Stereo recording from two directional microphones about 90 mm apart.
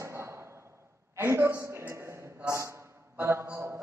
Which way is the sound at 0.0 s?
30° right (ahead or behind).